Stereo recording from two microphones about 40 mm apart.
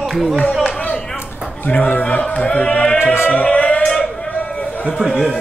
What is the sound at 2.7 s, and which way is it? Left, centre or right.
Music, left.